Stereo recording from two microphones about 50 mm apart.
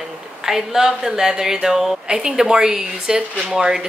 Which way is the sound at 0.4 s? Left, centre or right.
Centre.